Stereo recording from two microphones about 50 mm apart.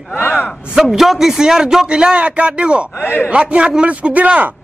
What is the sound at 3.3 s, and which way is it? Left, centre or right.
A man's voice, right.